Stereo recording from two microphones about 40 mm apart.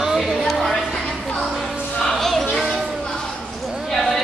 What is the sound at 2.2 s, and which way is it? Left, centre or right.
Music, centre.